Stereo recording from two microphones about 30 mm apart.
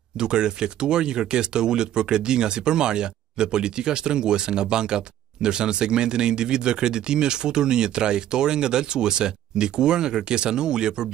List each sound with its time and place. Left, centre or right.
0.2 s speech: right